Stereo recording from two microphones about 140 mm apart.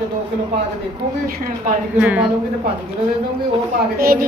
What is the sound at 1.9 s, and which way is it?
Speech, 10° right (ahead or behind).